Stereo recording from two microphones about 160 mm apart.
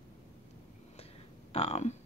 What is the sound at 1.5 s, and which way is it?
Speech, 45° left (ahead or behind).